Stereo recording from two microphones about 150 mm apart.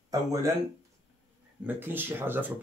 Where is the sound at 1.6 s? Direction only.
15° right (ahead or behind).